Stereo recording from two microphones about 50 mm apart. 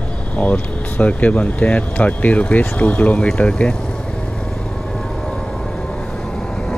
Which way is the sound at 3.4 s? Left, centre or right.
Left.